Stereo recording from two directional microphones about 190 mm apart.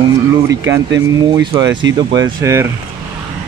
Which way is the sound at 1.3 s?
20° right (ahead or behind).